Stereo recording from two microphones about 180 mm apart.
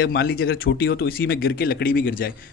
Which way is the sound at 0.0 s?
65° left (ahead or behind).